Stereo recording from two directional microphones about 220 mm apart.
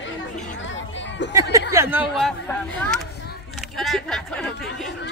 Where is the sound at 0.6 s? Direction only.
55° left (ahead or behind).